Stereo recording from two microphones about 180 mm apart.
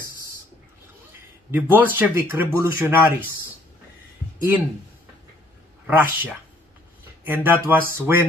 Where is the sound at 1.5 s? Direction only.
10° right (ahead or behind).